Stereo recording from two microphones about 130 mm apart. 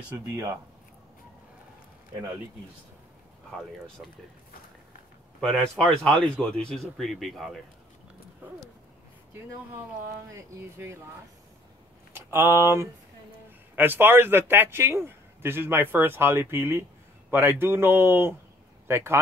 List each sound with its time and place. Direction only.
0.1 s speech: 25° right (ahead or behind)
3.4 s speech: 5° left (ahead or behind)
5.4 s speech: 5° left (ahead or behind)
10.3 s speech: 20° right (ahead or behind)
12.1 s a man's voice: 20° right (ahead or behind)